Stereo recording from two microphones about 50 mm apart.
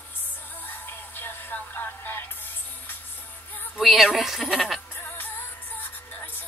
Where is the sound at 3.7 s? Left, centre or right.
Centre.